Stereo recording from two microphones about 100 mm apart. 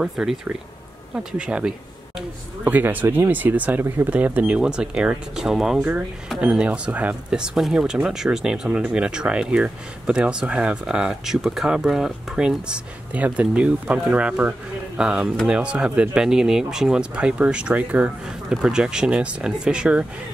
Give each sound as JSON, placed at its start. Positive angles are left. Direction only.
{"t": 0.0, "sound": "speech", "side_deg": -5}